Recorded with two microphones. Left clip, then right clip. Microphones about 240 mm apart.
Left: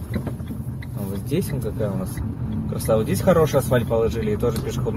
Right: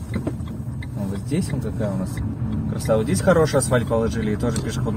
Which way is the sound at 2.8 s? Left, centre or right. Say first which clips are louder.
Even; centre.